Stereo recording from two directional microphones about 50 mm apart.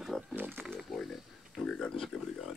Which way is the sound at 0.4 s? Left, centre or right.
Right.